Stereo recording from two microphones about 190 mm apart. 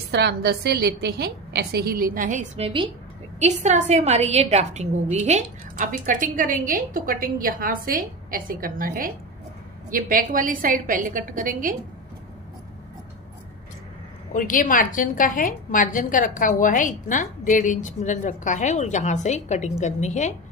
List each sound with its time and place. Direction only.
0.1 s a woman's voice: 60° right (ahead or behind)
14.3 s a woman's voice: 45° left (ahead or behind)